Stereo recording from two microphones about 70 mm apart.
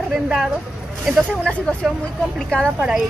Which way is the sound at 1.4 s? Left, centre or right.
Centre.